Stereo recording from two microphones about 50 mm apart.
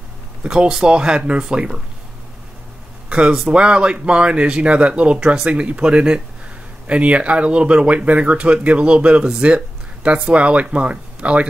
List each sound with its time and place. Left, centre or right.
0.4 s speech: centre
3.1 s a sound: centre
3.3 s speech: centre
5.5 s speech: right